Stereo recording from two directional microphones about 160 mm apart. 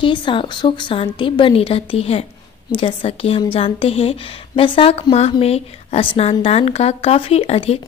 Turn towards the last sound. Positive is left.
turn(degrees=40)  # may be behind; listen again after turning